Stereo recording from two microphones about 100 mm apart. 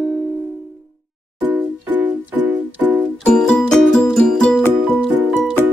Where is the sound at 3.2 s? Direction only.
10° left (ahead or behind).